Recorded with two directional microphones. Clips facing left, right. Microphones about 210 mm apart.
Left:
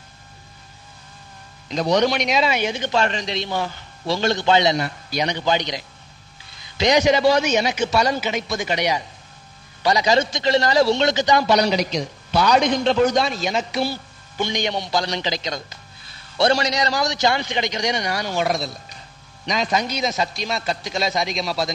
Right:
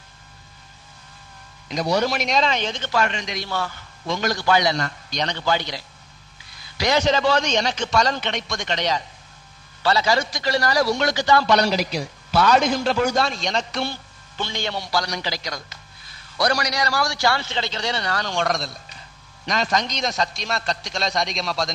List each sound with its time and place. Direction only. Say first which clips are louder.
1.7 s a man's voice: left 3 dB; 10° right (ahead or behind); by 2.9 s 10° left (ahead or behind)
2.9 s a man's voice: left 2 dB; 30° left (ahead or behind)
3.3 s speech: left 3 dB; 20° left (ahead or behind)
4.0 s speech: left 3 dB; 30° left (ahead or behind)
4.7 s a man's voice: left 3 dB; 10° left (ahead or behind)
11.4 s a man's voice: left 1 dB; centre (ahead or behind)
14.4 s a man's voice: left 4 dB; 15° left (ahead or behind)